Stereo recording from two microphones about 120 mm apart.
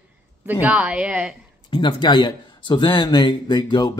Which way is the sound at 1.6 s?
40° left (ahead or behind).